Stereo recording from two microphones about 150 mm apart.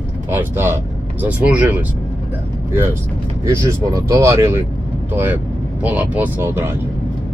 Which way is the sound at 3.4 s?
20° right (ahead or behind).